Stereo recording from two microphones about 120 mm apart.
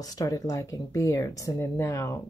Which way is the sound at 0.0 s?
30° left (ahead or behind).